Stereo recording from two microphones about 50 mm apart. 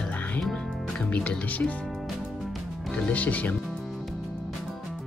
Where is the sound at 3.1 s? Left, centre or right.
Left.